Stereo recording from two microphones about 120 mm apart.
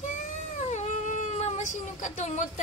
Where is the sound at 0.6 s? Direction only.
75° left (ahead or behind).